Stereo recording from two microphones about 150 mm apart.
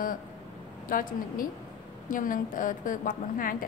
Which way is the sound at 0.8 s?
70° left (ahead or behind).